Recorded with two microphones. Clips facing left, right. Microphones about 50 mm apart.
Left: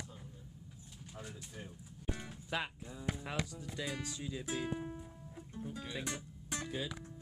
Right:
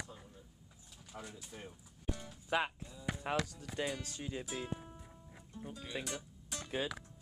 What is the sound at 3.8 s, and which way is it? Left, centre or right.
Speech, right.